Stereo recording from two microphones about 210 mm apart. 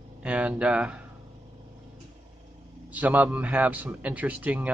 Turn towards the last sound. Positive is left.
turn(degrees=-5)  # may be behind; listen again after turning